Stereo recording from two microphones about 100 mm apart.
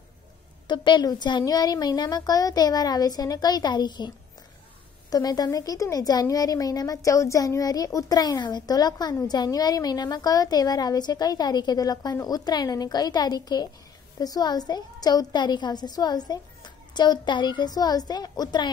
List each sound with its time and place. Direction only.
0.7 s a woman's voice: 50° left (ahead or behind)
5.1 s a woman's voice: 40° left (ahead or behind)